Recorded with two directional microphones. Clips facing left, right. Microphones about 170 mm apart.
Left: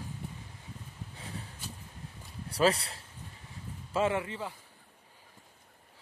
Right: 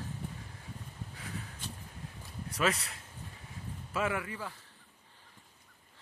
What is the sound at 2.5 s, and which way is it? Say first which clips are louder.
A man's voice: left 5 dB; 30° left (ahead or behind).